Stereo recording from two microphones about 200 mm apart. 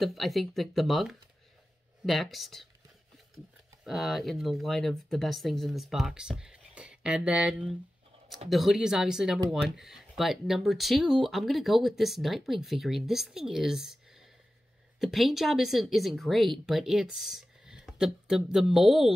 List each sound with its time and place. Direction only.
0.0 s speech: centre (ahead or behind)
3.8 s speech: centre (ahead or behind)
15.0 s speech: centre (ahead or behind)